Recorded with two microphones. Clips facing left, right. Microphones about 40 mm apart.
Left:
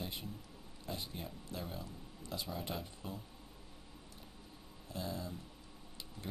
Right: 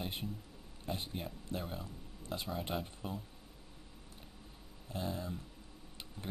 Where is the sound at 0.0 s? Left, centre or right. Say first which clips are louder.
Right 3 dB; right.